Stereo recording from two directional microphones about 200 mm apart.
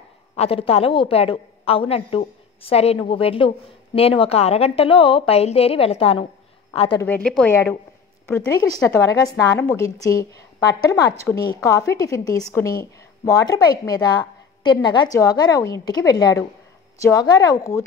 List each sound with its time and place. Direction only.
0.4 s a woman's voice: 30° left (ahead or behind)
7.0 s a woman's voice: 10° left (ahead or behind)
8.3 s a woman's voice: 15° left (ahead or behind)